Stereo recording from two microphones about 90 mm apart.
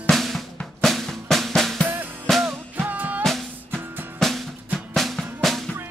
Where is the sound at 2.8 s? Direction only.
20° right (ahead or behind).